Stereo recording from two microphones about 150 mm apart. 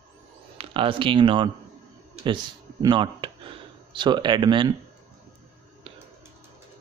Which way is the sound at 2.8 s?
30° right (ahead or behind).